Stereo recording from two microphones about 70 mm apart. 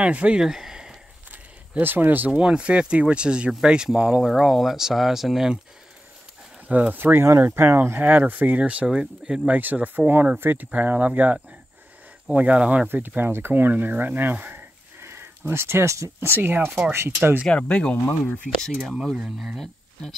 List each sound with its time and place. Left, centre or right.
0.0 s speech: centre
0.4 s a sound: centre
1.3 s speech: right
4.2 s speech: centre
6.7 s speech: right
8.0 s speech: right
9.5 s speech: right
12.4 s speech: centre
17.5 s speech: centre
19.1 s speech: centre